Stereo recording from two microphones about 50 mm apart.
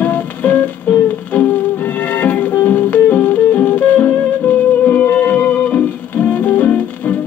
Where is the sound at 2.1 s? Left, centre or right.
Left.